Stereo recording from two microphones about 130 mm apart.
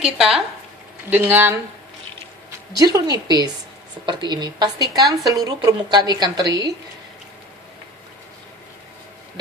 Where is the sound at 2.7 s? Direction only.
30° right (ahead or behind).